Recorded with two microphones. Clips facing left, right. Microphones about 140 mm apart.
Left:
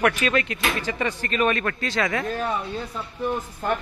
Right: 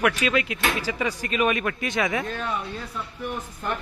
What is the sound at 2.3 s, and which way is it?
Speech, 30° left (ahead or behind).